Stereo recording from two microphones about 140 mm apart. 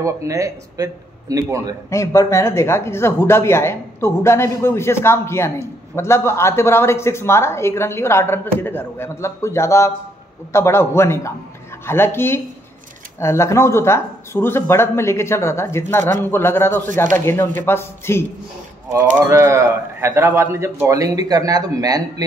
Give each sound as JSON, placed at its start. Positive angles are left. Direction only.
{"t": 0.0, "sound": "a man's voice", "side_deg": -20}
{"t": 1.9, "sound": "speech", "side_deg": 20}
{"t": 18.9, "sound": "a man's voice", "side_deg": -20}